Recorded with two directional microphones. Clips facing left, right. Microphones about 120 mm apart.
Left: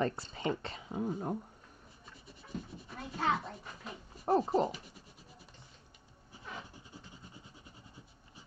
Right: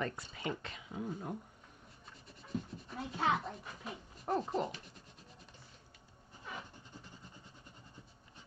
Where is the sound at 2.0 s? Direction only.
5° left (ahead or behind).